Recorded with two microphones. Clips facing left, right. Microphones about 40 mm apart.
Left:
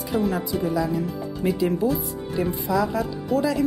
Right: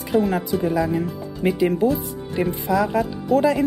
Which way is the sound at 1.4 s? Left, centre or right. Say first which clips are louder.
Right 3 dB; right.